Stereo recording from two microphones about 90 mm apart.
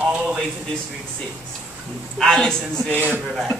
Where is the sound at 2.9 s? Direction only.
20° right (ahead or behind).